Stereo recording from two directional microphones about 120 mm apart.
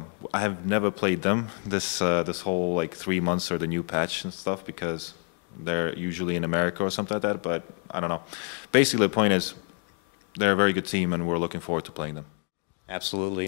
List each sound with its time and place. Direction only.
0.3 s speech: 15° left (ahead or behind)